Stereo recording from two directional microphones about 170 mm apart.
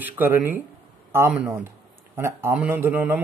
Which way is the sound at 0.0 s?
10° right (ahead or behind).